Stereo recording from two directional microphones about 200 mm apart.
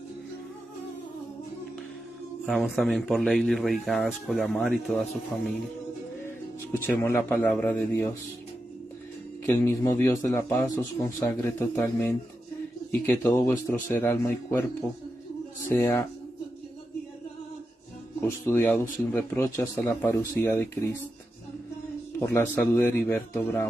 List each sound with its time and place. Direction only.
2.4 s a man's voice: centre (ahead or behind)
6.7 s speech: 10° left (ahead or behind)
9.5 s speech: 15° left (ahead or behind)
13.0 s speech: 10° left (ahead or behind)
18.4 s speech: 10° left (ahead or behind)
22.2 s speech: 10° left (ahead or behind)